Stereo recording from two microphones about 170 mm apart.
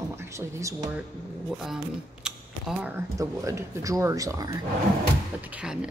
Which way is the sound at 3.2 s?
20° right (ahead or behind).